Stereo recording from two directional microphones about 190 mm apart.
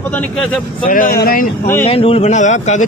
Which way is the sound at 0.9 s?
45° left (ahead or behind).